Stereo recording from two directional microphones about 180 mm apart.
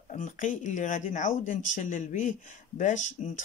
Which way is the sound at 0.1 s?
45° left (ahead or behind).